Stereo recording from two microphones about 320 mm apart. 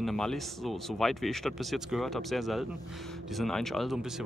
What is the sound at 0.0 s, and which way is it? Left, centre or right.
Speech, centre.